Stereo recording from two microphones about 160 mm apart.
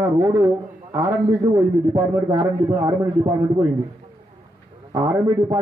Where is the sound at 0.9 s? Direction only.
25° right (ahead or behind).